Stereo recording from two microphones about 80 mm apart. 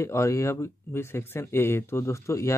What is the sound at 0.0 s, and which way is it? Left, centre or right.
Speech, left.